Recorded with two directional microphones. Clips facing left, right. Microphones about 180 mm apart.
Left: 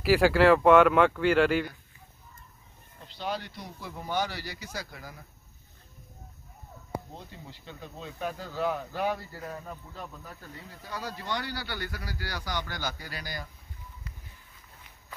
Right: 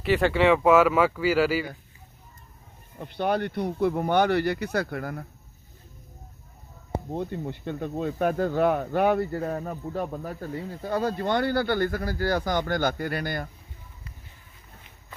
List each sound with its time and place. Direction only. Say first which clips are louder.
0.0 s speech: even; 5° left (ahead or behind)
3.0 s speech: right 9 dB; 60° right (ahead or behind)
7.1 s speech: right 15 dB; 55° right (ahead or behind)